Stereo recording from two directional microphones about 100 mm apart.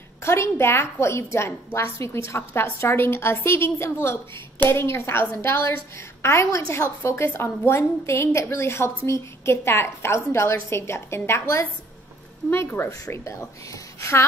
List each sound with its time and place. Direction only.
0.2 s a woman's voice: 25° left (ahead or behind)